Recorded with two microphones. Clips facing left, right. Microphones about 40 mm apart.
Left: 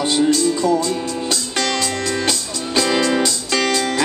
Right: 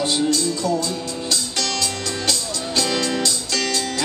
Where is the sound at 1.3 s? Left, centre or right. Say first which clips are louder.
Left 2 dB; left.